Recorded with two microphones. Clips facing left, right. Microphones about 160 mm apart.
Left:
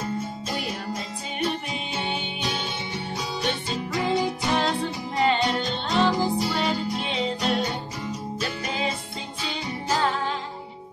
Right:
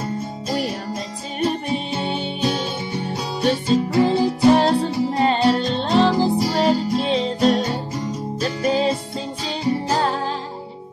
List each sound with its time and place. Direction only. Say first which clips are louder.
1.4 s music: right 7 dB; 35° right (ahead or behind)